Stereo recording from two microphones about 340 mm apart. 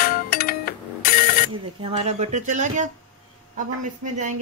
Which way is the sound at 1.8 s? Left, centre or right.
Centre.